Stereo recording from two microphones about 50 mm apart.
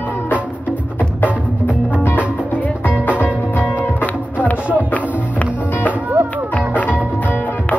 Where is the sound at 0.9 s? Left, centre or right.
Left.